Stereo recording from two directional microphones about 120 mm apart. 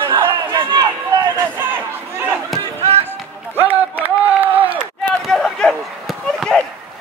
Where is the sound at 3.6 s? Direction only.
15° right (ahead or behind).